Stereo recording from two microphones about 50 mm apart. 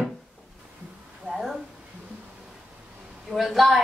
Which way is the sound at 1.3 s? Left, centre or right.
Centre.